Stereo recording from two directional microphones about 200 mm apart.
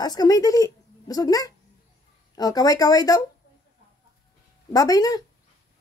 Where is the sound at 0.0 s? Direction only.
20° left (ahead or behind).